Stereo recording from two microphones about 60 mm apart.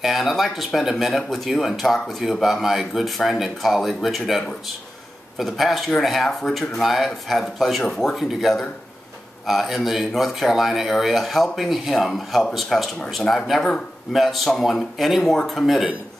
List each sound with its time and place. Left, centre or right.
0.0 s speech: centre
5.4 s speech: centre
14.1 s speech: centre